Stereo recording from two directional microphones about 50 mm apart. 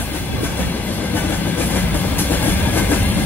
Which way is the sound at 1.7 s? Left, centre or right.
Left.